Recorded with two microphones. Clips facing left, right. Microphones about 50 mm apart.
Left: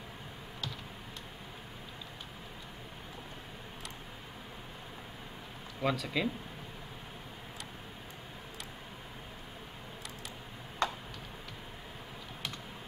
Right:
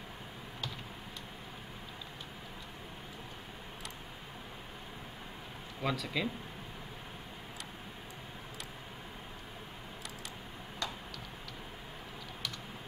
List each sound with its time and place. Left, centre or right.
5.8 s speech: centre
10.8 s tick-tock: left